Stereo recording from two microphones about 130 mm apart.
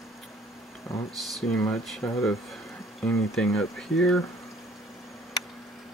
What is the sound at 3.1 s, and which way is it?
Speech, 5° left (ahead or behind).